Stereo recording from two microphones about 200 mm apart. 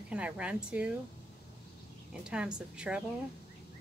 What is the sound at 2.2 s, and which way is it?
Speech, 5° right (ahead or behind).